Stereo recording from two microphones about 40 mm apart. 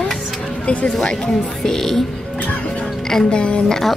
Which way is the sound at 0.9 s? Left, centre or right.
Centre.